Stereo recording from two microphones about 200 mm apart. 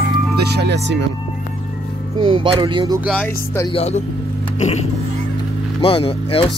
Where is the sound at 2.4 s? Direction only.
25° right (ahead or behind).